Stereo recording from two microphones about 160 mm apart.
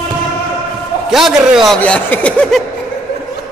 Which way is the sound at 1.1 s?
Centre (ahead or behind).